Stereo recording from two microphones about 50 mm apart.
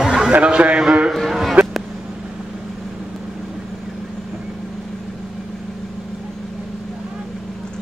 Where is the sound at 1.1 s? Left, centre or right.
Centre.